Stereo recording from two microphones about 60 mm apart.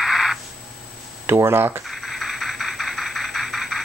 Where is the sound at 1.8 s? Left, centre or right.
Centre.